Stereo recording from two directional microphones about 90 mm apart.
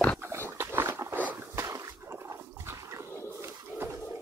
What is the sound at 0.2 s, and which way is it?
Dog, 30° right (ahead or behind).